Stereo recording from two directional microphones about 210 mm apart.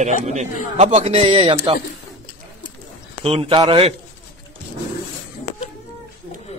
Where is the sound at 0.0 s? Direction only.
35° right (ahead or behind).